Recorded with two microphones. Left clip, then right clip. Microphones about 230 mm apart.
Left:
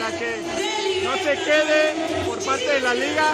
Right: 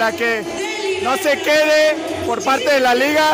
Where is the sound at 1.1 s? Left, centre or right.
Right.